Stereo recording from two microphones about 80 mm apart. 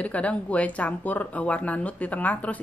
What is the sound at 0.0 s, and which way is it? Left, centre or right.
Speech, centre.